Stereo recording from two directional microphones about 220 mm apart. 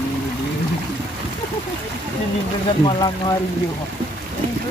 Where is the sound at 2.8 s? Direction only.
20° left (ahead or behind).